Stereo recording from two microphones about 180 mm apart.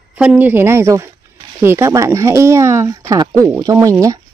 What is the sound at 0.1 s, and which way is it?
Speech, 5° right (ahead or behind).